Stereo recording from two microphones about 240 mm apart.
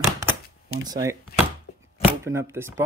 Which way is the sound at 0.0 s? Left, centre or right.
Centre.